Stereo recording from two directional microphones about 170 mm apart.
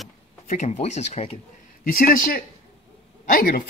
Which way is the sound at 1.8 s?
55° left (ahead or behind).